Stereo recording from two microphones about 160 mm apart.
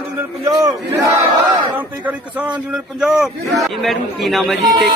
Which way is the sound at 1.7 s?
10° right (ahead or behind).